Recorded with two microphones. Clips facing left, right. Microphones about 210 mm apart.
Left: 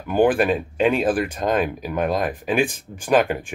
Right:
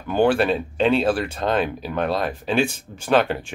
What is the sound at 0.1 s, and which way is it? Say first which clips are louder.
Speech: left 1 dB; 10° left (ahead or behind).